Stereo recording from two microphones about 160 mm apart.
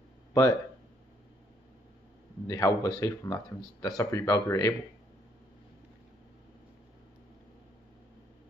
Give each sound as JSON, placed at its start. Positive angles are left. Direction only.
{"t": 0.3, "sound": "speech", "side_deg": 20}
{"t": 2.4, "sound": "speech", "side_deg": 20}